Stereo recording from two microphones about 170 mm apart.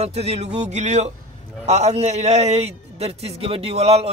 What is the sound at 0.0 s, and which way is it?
A man's voice, 40° right (ahead or behind).